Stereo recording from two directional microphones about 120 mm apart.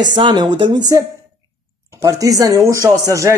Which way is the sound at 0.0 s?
40° right (ahead or behind).